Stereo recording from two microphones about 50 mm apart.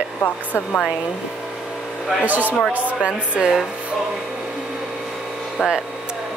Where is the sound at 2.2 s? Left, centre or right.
Right.